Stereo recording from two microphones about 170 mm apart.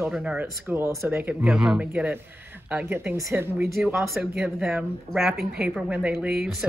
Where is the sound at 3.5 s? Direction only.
Centre (ahead or behind).